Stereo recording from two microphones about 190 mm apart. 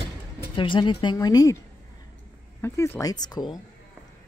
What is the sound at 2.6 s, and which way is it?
Speech, 10° left (ahead or behind).